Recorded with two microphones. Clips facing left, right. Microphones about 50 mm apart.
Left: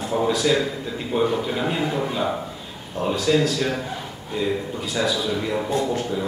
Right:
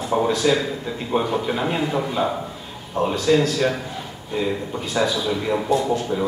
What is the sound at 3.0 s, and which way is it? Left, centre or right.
Speech, right.